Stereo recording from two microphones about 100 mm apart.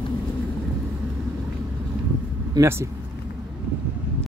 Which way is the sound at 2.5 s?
30° right (ahead or behind).